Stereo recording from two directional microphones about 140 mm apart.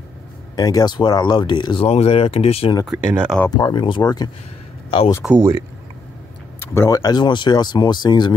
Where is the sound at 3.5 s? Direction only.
30° left (ahead or behind).